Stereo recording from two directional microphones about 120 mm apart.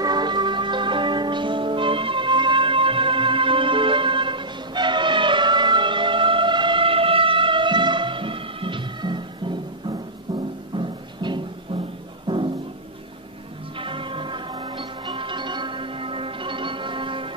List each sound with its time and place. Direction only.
0.0 s music: 35° right (ahead or behind)
13.7 s music: 45° right (ahead or behind)